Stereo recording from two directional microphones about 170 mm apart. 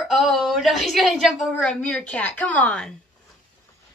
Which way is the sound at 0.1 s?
Centre (ahead or behind).